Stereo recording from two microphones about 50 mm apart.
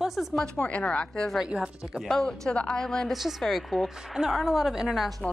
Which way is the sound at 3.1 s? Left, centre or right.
Centre.